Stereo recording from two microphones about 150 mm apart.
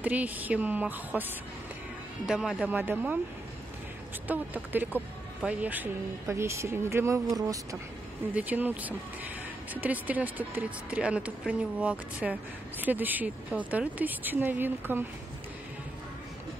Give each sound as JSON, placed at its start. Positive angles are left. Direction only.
{"t": 0.0, "sound": "speech", "side_deg": -10}
{"t": 2.2, "sound": "speech", "side_deg": -5}
{"t": 4.3, "sound": "speech", "side_deg": -10}
{"t": 8.4, "sound": "speech", "side_deg": -10}